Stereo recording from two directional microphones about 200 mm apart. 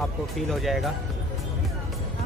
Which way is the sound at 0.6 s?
Centre (ahead or behind).